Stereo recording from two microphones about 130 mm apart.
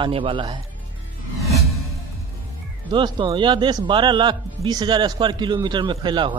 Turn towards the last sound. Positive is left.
turn(degrees=-35)  # may be behind; listen again after turning